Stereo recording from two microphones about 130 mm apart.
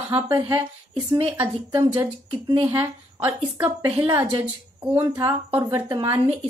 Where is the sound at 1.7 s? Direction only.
30° right (ahead or behind).